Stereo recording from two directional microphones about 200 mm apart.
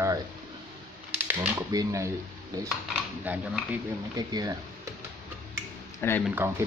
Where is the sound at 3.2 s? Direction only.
5° right (ahead or behind).